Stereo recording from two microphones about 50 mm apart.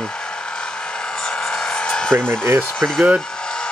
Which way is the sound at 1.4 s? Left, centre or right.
Centre.